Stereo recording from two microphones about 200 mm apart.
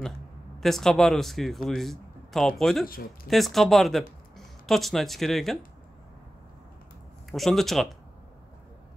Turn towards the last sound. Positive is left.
turn(degrees=0)  # may be behind; listen again after turning